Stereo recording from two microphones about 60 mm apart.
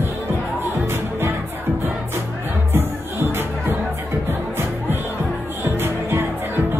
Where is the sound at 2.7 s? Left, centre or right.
Right.